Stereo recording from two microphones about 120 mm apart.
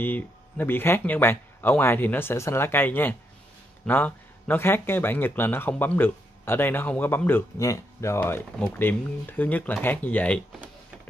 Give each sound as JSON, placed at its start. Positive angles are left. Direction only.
{"t": 0.0, "sound": "speech", "side_deg": 15}